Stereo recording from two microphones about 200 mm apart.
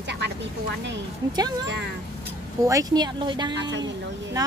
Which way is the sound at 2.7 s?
20° right (ahead or behind).